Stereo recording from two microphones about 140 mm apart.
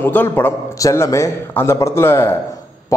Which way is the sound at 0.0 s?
15° left (ahead or behind).